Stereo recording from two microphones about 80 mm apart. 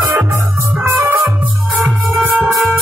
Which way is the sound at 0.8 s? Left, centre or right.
Right.